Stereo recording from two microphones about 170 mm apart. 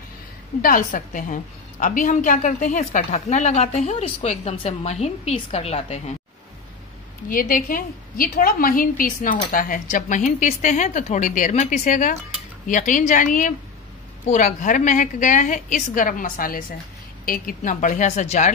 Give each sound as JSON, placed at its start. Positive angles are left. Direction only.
{"t": 0.6, "sound": "a woman's voice", "side_deg": 55}
{"t": 7.2, "sound": "a woman's voice", "side_deg": 55}